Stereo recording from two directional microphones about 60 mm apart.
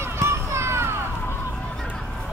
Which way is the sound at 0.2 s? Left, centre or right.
Right.